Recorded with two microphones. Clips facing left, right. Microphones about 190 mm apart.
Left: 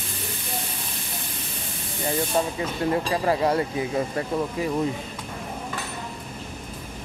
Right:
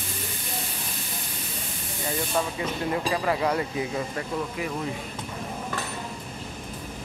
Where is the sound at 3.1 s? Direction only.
30° left (ahead or behind).